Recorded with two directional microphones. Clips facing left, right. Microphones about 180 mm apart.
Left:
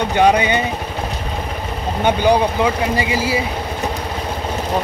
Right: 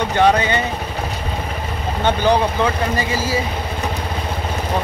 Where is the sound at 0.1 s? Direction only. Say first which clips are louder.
Left 1 dB; 15° left (ahead or behind).